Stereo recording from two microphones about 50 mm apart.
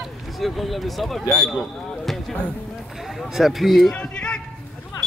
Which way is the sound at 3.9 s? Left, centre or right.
Left.